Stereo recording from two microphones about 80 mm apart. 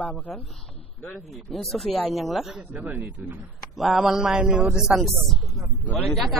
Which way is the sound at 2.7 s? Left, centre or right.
Right.